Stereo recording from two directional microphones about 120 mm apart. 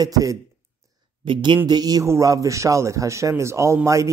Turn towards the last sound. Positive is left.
turn(degrees=-25)  # may be behind; listen again after turning